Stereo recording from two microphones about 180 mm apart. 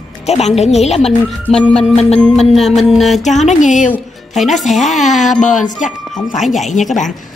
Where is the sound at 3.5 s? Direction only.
45° left (ahead or behind).